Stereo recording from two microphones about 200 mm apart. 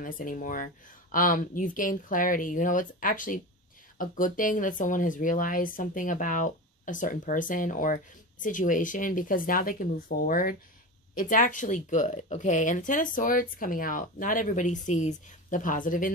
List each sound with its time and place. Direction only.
0.0 s speech: 45° left (ahead or behind)